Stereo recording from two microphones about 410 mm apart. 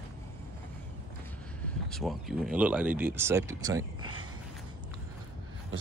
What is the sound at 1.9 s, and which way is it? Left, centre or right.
Speech, centre.